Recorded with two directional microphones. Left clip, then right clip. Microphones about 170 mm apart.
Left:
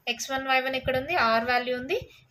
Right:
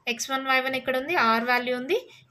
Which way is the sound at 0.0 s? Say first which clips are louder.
Right 2 dB; 30° right (ahead or behind).